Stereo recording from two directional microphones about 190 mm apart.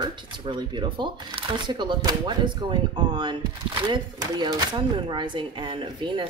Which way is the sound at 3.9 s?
20° right (ahead or behind).